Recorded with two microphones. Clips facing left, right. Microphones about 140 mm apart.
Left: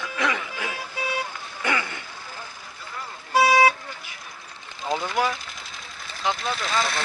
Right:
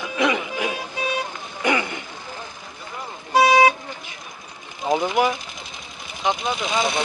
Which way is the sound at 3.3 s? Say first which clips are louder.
Right 3 dB; 20° right (ahead or behind).